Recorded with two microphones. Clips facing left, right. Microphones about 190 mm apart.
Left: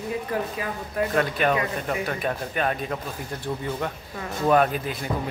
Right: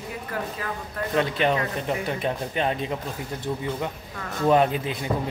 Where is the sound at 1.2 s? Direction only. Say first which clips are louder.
Right 2 dB; 20° right (ahead or behind).